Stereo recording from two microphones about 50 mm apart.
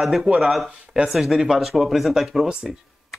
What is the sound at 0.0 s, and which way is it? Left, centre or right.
Speech, centre.